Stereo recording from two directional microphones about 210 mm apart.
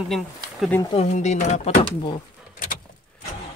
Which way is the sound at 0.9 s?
35° left (ahead or behind).